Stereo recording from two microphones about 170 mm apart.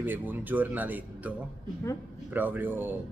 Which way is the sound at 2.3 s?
10° right (ahead or behind).